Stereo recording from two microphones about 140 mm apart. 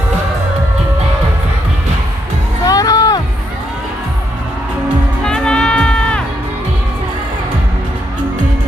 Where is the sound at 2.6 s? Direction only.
25° left (ahead or behind).